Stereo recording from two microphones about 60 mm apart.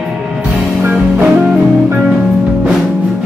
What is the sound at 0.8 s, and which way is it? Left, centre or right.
Music, right.